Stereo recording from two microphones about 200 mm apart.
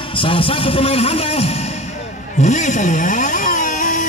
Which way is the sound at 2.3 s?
35° left (ahead or behind).